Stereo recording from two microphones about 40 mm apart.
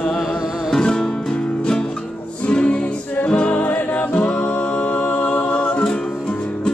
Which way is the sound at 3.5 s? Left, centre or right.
Left.